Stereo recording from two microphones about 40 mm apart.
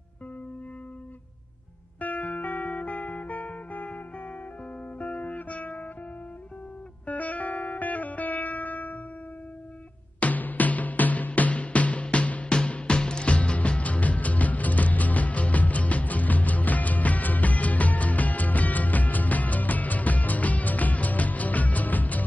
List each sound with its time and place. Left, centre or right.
2.0 s music: left
7.1 s music: left
10.2 s music: left
12.4 s music: left